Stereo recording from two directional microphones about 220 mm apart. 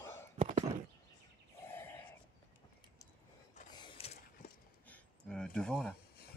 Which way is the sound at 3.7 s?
20° left (ahead or behind).